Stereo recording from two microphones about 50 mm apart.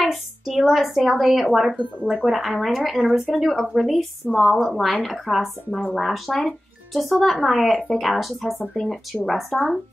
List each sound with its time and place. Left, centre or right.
0.0 s a sound: centre
0.7 s speech: centre
5.7 s speech: left
5.9 s speech: centre